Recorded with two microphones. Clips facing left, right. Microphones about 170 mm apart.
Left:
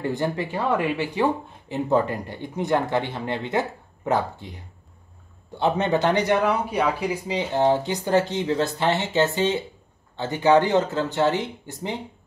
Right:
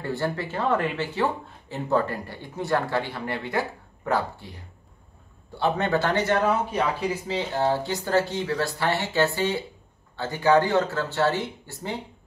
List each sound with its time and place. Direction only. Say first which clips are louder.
0.0 s speech: left 3 dB; 15° left (ahead or behind)